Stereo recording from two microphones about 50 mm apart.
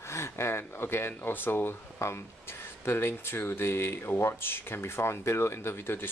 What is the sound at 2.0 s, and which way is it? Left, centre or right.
Speech, left.